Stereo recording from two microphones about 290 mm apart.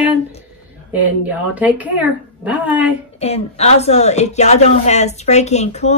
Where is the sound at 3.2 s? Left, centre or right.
Left.